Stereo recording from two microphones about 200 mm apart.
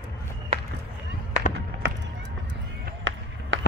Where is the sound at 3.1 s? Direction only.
65° right (ahead or behind).